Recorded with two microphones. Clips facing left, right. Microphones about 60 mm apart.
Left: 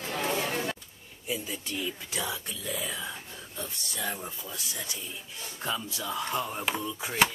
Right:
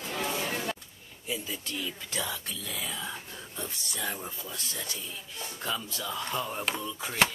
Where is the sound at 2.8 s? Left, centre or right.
Centre.